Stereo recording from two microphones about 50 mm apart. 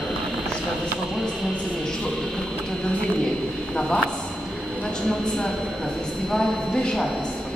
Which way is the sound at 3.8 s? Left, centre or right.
Centre.